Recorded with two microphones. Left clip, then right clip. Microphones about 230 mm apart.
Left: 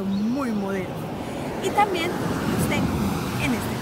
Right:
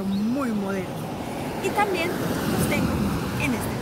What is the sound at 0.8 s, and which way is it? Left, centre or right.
Vehicle, right.